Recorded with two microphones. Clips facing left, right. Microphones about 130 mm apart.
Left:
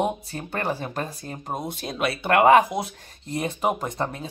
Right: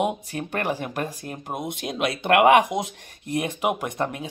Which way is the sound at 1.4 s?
10° right (ahead or behind).